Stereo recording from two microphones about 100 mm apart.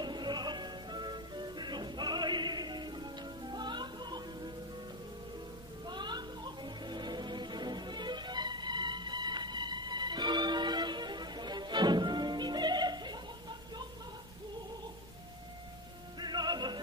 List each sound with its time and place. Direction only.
0.0 s music: 45° right (ahead or behind)
5.9 s music: 45° right (ahead or behind)
16.2 s music: 45° right (ahead or behind)